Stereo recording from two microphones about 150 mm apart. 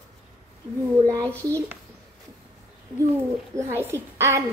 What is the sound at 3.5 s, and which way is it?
Speech, 15° right (ahead or behind).